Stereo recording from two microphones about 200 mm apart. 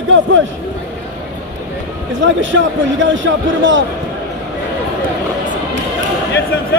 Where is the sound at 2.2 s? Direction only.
70° right (ahead or behind).